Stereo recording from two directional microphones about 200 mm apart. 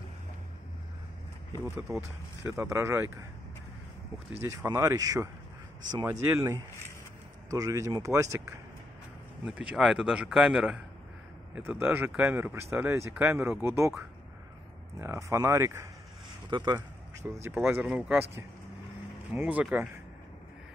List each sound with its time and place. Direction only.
1.8 s speech: 10° right (ahead or behind)
4.4 s speech: 15° right (ahead or behind)
9.5 s a man's voice: 5° right (ahead or behind); by 16.7 s 20° right (ahead or behind)
17.4 s speech: 10° right (ahead or behind)